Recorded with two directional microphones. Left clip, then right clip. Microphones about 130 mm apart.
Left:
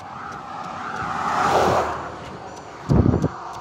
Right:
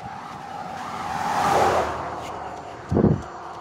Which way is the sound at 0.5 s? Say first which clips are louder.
Left 2 dB; 30° right (ahead or behind).